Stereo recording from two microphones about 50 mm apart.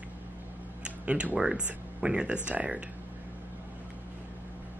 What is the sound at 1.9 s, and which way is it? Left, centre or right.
Speech, centre.